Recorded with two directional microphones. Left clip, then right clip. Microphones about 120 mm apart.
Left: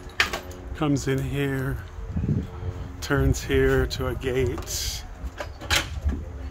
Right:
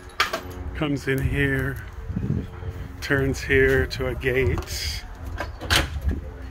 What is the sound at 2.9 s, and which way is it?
Speech, 20° left (ahead or behind).